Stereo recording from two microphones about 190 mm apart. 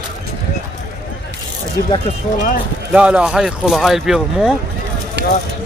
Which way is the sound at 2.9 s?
5° right (ahead or behind).